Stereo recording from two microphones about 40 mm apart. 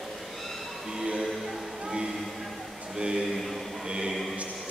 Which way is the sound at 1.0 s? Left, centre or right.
Centre.